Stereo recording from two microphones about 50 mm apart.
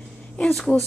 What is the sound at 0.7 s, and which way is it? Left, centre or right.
Speech, centre.